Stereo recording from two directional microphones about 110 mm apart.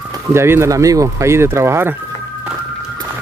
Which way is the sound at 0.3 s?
25° right (ahead or behind).